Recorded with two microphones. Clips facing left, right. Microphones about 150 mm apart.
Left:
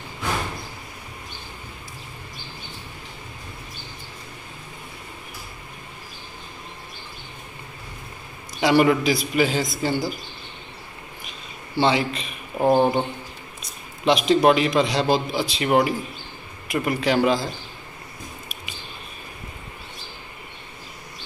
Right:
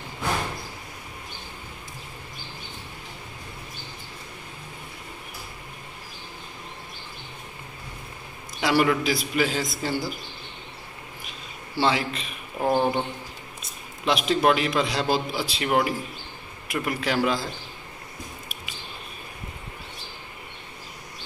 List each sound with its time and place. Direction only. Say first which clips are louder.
8.5 s a man's voice: left 4 dB; centre (ahead or behind)
11.7 s a man's voice: left 3 dB; centre (ahead or behind)
12.5 s speech: left 5 dB; 25° left (ahead or behind)
13.6 s a man's voice: left 1 dB; centre (ahead or behind)